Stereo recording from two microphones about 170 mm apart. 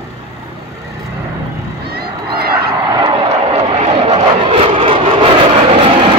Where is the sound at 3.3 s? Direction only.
40° right (ahead or behind).